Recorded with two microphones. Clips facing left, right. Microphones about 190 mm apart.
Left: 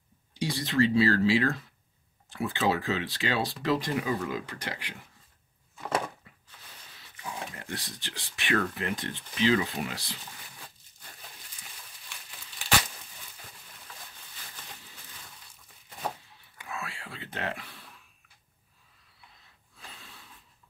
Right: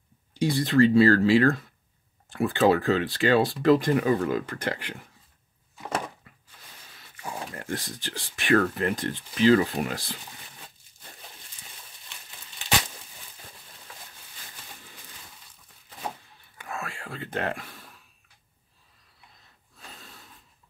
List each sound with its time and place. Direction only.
0.3 s speech: 50° right (ahead or behind)
7.2 s speech: 50° right (ahead or behind)
16.5 s a sound: 45° right (ahead or behind)
19.9 s snort: 40° right (ahead or behind)